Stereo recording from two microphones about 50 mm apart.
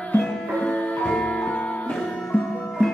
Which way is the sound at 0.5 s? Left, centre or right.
Left.